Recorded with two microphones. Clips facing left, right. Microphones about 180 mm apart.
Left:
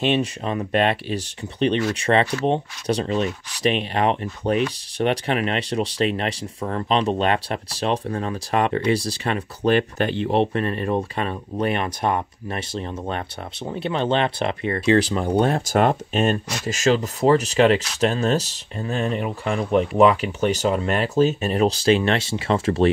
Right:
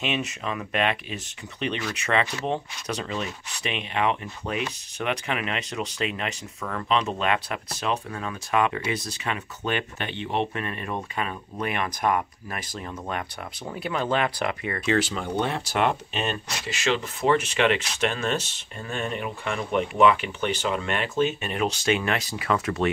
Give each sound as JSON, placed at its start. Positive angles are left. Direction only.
{"t": 0.0, "sound": "speech", "side_deg": 35}